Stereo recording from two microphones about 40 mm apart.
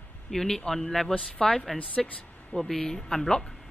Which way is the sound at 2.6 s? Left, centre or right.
Centre.